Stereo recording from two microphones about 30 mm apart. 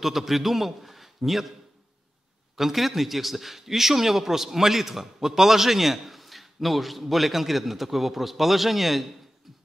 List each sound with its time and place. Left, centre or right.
0.0 s a man's voice: centre
2.5 s a man's voice: centre